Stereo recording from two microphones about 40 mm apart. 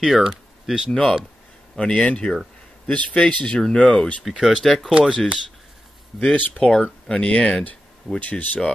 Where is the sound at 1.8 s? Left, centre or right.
Centre.